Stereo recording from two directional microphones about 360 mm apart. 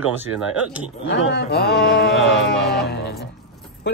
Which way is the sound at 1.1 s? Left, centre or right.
Left.